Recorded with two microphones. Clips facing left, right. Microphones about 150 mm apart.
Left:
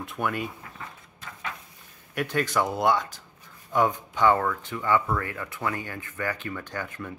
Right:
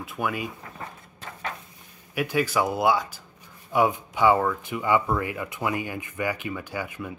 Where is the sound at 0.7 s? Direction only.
40° right (ahead or behind).